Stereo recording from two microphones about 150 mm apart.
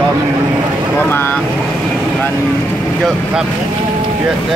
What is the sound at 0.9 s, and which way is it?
Vehicle, 15° left (ahead or behind).